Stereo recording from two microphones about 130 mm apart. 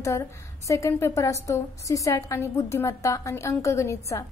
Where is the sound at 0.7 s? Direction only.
25° left (ahead or behind).